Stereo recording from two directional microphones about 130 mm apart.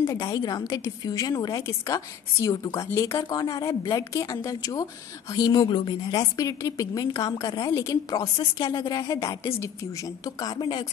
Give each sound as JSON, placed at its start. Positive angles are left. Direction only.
{"t": 0.0, "sound": "a woman's voice", "side_deg": 25}